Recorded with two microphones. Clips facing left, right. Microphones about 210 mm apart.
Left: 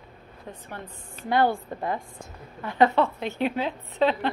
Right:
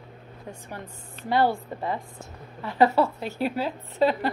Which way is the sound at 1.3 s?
Centre (ahead or behind).